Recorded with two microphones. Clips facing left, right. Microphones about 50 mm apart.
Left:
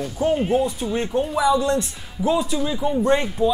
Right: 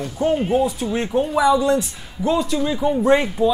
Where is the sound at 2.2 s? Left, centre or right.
Right.